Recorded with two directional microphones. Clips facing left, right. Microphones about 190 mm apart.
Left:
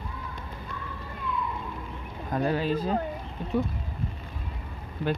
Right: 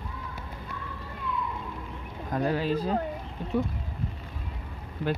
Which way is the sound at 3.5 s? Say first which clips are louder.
Left 1 dB; 10° left (ahead or behind).